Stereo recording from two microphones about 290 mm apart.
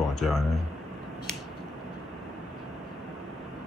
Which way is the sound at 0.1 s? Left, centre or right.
Centre.